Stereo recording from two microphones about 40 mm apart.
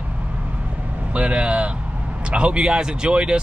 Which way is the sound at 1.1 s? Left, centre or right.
Right.